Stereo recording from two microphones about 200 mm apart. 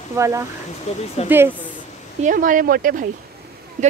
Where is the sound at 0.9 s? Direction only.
35° left (ahead or behind).